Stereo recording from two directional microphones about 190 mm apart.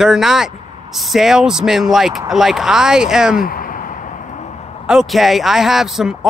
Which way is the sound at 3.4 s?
50° left (ahead or behind).